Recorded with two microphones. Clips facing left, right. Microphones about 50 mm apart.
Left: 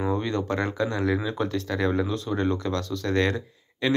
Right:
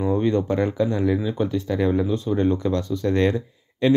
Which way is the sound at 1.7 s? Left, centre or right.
Left.